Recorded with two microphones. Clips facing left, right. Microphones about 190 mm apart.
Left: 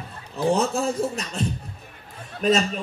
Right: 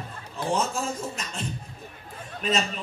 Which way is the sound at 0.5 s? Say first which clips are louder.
Left 4 dB; 35° left (ahead or behind).